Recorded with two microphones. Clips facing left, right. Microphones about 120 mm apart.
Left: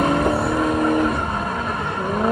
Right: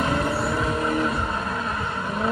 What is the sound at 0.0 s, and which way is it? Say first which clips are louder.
Vehicle: left 5 dB; 55° left (ahead or behind).